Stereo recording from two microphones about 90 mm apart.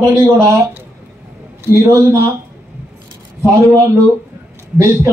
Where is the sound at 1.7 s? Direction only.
30° right (ahead or behind).